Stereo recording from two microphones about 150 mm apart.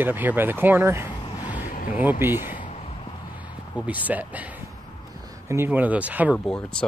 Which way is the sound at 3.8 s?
10° right (ahead or behind).